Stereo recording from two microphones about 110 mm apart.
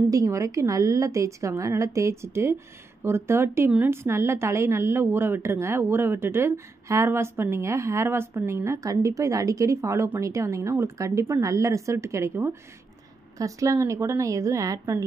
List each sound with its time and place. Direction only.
0.1 s a woman's voice: 30° right (ahead or behind)